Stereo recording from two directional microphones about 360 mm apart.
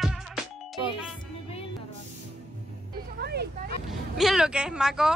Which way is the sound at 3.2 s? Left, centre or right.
Right.